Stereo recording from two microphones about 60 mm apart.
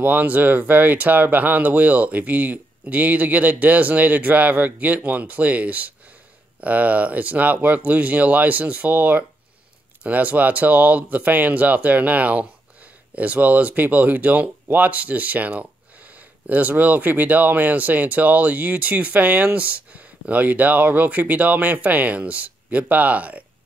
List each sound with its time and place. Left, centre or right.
0.0 s speech: right